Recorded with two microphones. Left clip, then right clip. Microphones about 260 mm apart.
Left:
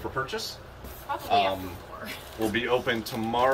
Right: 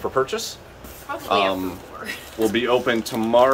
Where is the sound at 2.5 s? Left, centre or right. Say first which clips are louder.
Right 6 dB; centre.